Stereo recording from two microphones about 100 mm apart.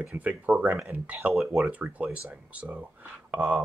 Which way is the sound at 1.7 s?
15° right (ahead or behind).